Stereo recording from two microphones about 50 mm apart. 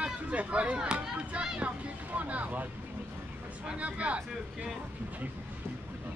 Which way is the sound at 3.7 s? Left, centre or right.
Right.